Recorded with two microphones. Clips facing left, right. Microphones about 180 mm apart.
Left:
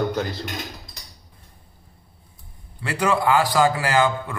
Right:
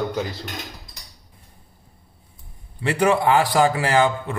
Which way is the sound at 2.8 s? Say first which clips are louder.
Right 3 dB; 20° right (ahead or behind).